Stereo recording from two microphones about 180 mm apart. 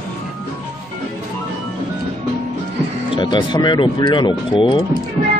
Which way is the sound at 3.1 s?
25° left (ahead or behind).